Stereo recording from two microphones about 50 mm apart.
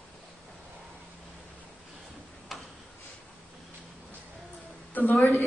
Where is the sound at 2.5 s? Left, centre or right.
Centre.